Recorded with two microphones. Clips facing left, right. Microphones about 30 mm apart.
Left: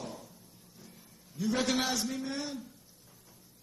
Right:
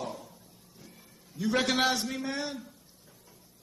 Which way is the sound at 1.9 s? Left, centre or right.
Right.